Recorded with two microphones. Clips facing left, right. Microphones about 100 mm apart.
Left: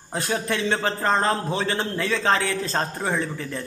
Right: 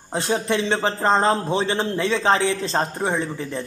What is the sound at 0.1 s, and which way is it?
A man's voice, 25° right (ahead or behind).